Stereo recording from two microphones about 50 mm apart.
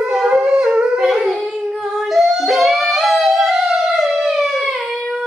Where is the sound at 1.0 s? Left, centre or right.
Centre.